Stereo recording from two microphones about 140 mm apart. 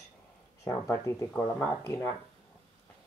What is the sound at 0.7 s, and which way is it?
Speech, 20° left (ahead or behind).